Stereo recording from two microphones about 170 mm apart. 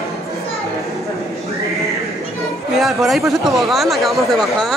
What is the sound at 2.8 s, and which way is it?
Speech, centre (ahead or behind).